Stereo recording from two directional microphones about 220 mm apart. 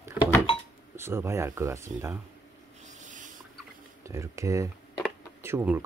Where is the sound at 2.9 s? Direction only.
35° right (ahead or behind).